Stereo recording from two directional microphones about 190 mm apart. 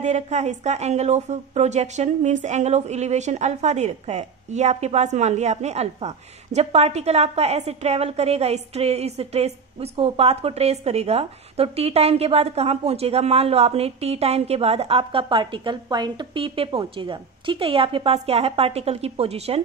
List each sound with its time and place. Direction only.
0.0 s a woman's voice: 35° right (ahead or behind)